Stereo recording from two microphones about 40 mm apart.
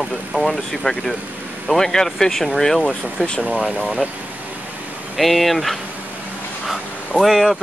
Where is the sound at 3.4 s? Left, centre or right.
Right.